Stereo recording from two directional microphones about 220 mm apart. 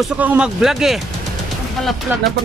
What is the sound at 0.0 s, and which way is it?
Speech, 5° right (ahead or behind).